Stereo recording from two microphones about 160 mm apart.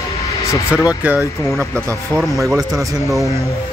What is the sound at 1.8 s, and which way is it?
Speech, 20° right (ahead or behind).